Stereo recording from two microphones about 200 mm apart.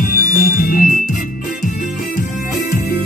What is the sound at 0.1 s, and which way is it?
Music, 45° left (ahead or behind).